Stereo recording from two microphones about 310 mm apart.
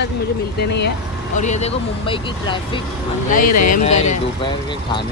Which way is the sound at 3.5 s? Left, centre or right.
Left.